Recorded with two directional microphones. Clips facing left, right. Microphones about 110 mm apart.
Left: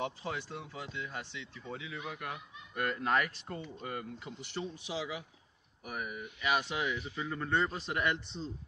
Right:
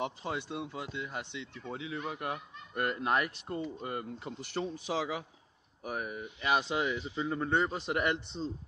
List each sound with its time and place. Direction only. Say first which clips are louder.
0.0 s speech: right 2 dB; 20° right (ahead or behind)
3.0 s speech: left 2 dB; 20° right (ahead or behind)
4.6 s speech: right 5 dB; 50° right (ahead or behind)
5.9 s speech: right 3 dB; 30° right (ahead or behind)